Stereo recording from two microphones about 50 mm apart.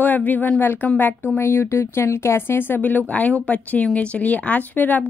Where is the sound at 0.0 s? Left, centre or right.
Left.